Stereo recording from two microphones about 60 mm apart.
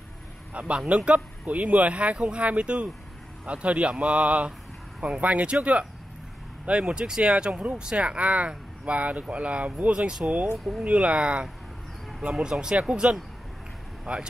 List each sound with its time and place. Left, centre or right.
0.5 s speech: centre